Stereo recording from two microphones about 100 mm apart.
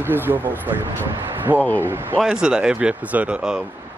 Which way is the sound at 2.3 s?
5° right (ahead or behind).